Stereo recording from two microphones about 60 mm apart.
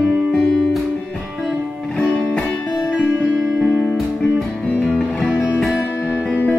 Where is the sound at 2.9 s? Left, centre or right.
Centre.